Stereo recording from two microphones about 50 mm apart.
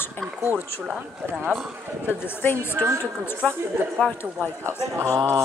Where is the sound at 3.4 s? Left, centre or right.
Left.